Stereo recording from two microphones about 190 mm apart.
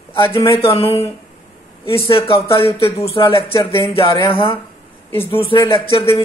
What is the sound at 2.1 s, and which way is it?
Speech, 30° left (ahead or behind).